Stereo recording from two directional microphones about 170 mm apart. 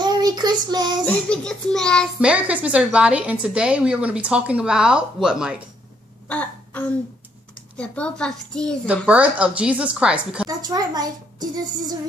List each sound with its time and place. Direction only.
0.0 s child singing: 25° right (ahead or behind)
1.0 s a child's voice: 5° left (ahead or behind)
2.1 s a woman's voice: 5° right (ahead or behind)
6.2 s a sound: 10° left (ahead or behind)
7.7 s a child's voice: 5° left (ahead or behind)
8.8 s a woman's voice: 5° right (ahead or behind)
10.5 s a woman's voice: 25° right (ahead or behind)